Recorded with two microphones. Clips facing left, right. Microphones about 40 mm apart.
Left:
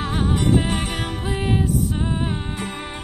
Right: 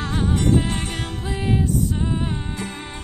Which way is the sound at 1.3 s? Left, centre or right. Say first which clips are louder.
Even; left.